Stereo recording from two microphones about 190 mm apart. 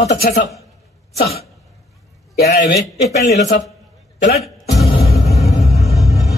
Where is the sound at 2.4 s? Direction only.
55° left (ahead or behind).